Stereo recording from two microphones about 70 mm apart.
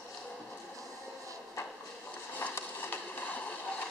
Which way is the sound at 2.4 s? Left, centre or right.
Left.